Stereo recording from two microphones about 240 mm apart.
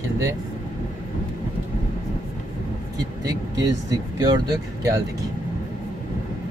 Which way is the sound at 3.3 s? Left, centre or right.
Centre.